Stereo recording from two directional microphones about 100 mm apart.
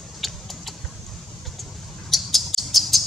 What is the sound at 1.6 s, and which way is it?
Bird, centre (ahead or behind).